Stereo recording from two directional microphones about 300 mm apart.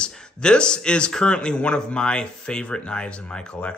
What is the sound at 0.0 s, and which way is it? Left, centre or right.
Speech, centre.